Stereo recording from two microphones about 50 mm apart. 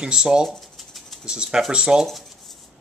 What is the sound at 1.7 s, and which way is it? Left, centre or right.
Speech, centre.